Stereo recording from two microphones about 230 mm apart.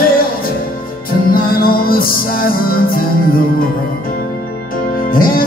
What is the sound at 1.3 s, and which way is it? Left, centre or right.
Music, left.